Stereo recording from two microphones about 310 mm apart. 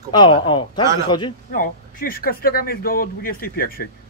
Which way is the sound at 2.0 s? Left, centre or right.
Left.